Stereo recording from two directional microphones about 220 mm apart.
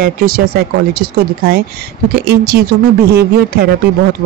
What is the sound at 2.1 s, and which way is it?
Speech, 45° right (ahead or behind).